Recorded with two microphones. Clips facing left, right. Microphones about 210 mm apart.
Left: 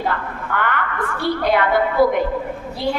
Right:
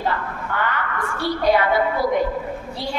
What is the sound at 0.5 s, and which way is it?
A woman's voice, 55° left (ahead or behind).